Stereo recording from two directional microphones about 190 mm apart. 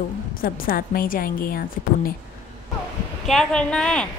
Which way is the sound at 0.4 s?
50° left (ahead or behind).